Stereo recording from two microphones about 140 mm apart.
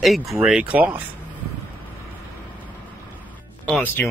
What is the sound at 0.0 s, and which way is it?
Speech, centre (ahead or behind).